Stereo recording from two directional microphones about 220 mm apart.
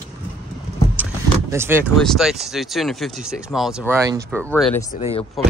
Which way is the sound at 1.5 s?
10° right (ahead or behind).